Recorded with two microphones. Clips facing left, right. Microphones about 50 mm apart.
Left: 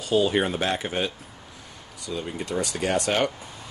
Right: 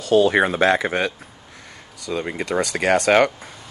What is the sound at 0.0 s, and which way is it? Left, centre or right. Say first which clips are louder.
Speech: right 6 dB; right.